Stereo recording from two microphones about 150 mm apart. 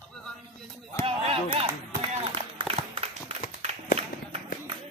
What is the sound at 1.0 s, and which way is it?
Run, 40° right (ahead or behind).